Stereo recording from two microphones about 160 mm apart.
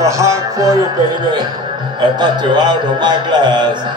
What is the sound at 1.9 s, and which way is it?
A man's voice, 30° right (ahead or behind).